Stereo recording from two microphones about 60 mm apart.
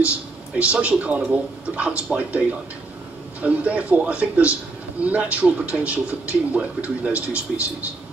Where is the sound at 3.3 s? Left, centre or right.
Right.